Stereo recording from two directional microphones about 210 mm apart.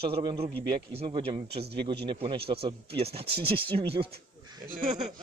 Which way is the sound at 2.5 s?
50° right (ahead or behind).